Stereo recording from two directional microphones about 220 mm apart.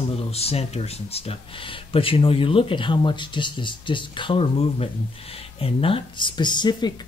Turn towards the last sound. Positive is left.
turn(degrees=20)  # may be behind; listen again after turning